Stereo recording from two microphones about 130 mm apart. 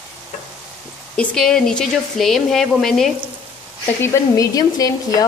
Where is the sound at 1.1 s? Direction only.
5° left (ahead or behind).